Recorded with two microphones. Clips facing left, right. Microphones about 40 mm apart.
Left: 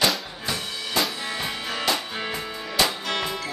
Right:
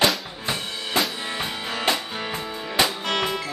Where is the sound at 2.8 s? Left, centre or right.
Right.